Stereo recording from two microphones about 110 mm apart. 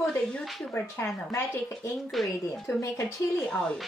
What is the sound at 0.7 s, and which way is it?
Speech, 20° left (ahead or behind).